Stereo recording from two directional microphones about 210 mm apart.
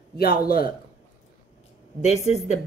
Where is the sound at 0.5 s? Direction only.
45° left (ahead or behind).